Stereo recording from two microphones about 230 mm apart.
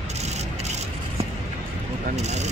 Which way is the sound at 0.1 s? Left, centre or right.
Right.